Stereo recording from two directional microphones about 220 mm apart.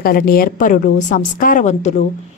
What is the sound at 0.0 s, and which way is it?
A woman's voice, 40° left (ahead or behind).